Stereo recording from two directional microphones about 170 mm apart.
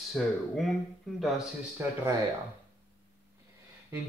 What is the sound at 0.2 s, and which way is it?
Speech, 5° left (ahead or behind).